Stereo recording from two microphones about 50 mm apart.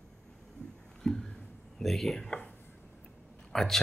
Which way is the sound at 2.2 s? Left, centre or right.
Left.